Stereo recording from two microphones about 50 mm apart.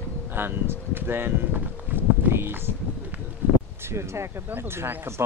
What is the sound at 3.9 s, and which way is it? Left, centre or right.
Speech, right.